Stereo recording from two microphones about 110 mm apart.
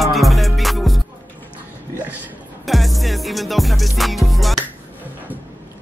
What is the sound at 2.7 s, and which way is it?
Music, centre (ahead or behind).